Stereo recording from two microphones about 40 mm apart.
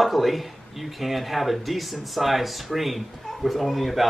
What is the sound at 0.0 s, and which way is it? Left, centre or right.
Speech, centre.